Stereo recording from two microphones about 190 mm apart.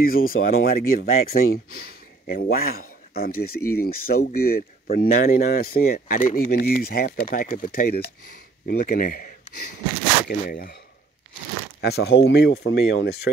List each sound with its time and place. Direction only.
0.0 s speech: 50° left (ahead or behind)
11.8 s speech: 60° left (ahead or behind)